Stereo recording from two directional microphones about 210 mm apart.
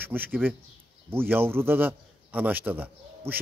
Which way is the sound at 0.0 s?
10° right (ahead or behind).